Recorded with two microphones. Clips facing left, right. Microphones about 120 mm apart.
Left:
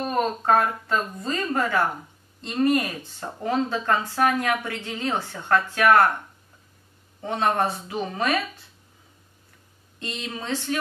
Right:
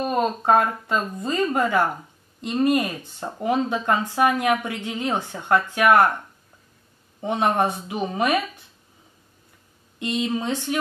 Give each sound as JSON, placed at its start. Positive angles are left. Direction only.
{"t": 0.0, "sound": "speech", "side_deg": -15}
{"t": 7.2, "sound": "speech", "side_deg": -15}
{"t": 9.9, "sound": "speech", "side_deg": -15}